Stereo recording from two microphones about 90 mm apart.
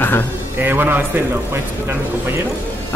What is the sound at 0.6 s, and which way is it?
Speech, 20° right (ahead or behind).